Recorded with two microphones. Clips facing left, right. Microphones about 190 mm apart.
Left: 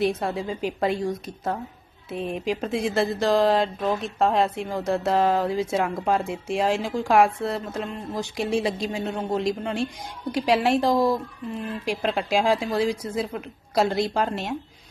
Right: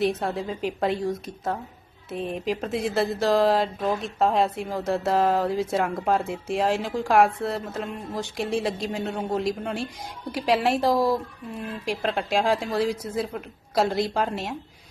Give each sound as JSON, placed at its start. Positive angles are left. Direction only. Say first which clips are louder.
{"t": 0.0, "sound": "speech", "louder": "left 1 dB", "side_deg": 0}